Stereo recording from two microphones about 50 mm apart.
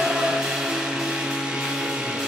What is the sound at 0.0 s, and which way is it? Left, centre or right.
Music, centre.